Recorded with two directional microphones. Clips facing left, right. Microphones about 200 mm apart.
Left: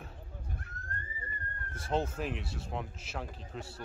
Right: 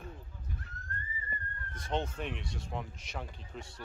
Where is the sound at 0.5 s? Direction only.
50° left (ahead or behind).